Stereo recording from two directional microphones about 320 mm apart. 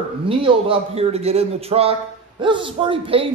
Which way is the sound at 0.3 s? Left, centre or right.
Centre.